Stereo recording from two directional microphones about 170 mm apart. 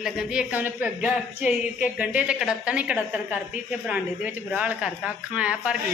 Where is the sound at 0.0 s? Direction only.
5° right (ahead or behind).